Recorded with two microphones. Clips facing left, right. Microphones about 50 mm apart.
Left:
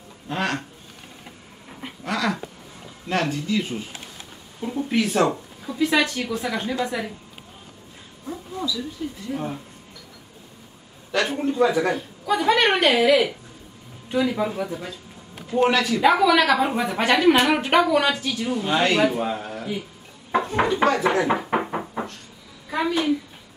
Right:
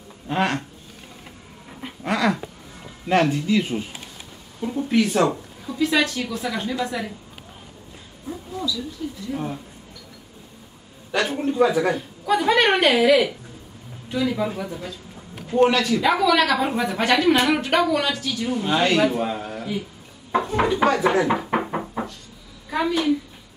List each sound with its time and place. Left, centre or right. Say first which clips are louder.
0.3 s speech: right 3 dB; centre
1.7 s cat: right 1 dB; centre
2.0 s dog: right 3 dB; centre
3.1 s speech: right 5 dB; centre
4.6 s speech: right 2 dB; centre
5.8 s a woman's voice: even; centre
8.5 s speech: even; centre
9.3 s a woman's voice: even; centre
11.1 s a man's voice: even; centre
18.5 s a woman's voice: right 1 dB; centre
21.3 s knock: even; centre
22.7 s a woman's voice: right 1 dB; centre